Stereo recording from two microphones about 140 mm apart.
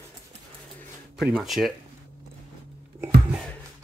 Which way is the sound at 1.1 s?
Centre (ahead or behind).